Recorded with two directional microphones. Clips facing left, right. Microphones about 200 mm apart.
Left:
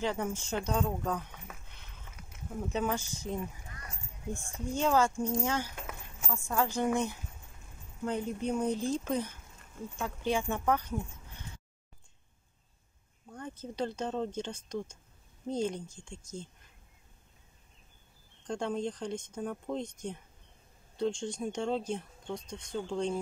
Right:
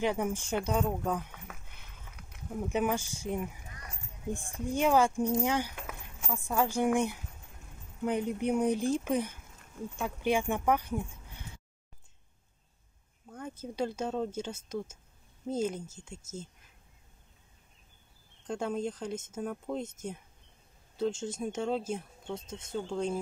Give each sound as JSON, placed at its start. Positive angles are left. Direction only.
{"t": 0.0, "sound": "speech", "side_deg": -15}
{"t": 1.5, "sound": "a sound", "side_deg": 0}
{"t": 2.7, "sound": "speech", "side_deg": -10}
{"t": 13.3, "sound": "speech", "side_deg": -10}
{"t": 18.4, "sound": "speech", "side_deg": -5}